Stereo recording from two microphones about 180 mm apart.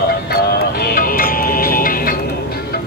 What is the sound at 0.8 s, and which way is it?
Music, 50° left (ahead or behind).